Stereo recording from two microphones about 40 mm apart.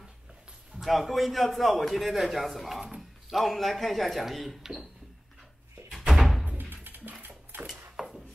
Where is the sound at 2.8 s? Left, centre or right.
Centre.